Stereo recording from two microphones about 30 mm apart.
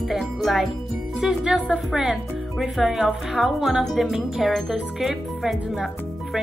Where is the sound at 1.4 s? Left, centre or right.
Centre.